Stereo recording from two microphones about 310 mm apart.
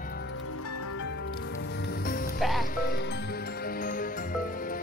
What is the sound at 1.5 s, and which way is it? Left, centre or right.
Music, left.